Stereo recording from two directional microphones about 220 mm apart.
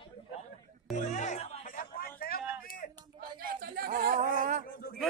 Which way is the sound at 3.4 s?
40° right (ahead or behind).